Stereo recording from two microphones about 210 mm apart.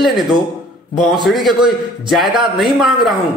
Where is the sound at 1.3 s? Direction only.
Centre (ahead or behind).